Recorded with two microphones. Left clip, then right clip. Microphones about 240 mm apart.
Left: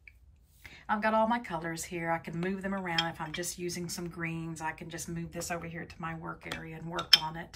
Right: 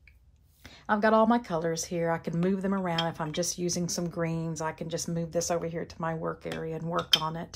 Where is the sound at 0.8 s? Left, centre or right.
Centre.